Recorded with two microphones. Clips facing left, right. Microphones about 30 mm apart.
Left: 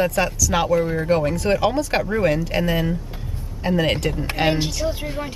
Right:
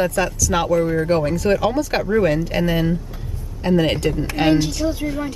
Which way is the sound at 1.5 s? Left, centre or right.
Centre.